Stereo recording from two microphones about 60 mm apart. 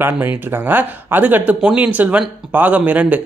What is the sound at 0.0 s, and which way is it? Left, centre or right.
Speech, right.